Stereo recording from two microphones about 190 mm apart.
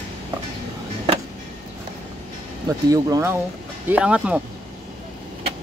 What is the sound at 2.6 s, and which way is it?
Speech, 20° right (ahead or behind).